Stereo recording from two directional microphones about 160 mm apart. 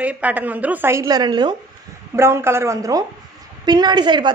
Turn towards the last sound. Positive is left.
turn(degrees=-30)  # may be behind; listen again after turning